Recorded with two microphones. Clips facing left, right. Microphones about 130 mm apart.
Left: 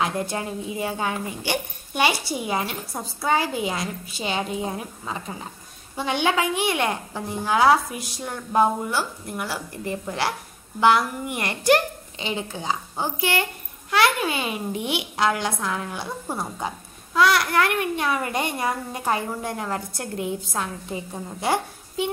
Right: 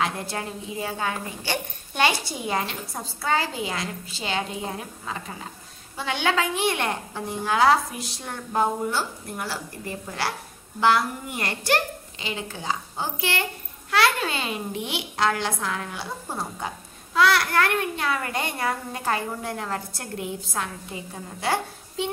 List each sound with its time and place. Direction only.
0.0 s a child's voice: 20° left (ahead or behind)
5.9 s a child's voice: 15° left (ahead or behind)